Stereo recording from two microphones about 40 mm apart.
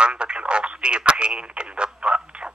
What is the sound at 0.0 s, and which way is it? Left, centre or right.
Radio, right.